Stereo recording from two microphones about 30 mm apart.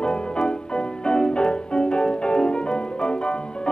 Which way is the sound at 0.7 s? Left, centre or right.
Left.